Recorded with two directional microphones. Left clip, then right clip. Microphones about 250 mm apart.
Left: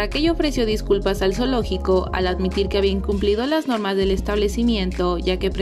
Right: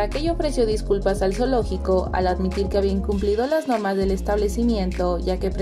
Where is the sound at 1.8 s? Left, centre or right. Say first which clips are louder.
Left 3 dB; left.